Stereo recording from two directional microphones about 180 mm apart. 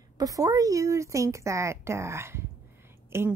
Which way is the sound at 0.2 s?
20° right (ahead or behind).